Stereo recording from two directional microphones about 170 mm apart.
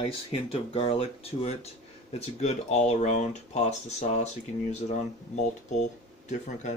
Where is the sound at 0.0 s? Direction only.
35° left (ahead or behind).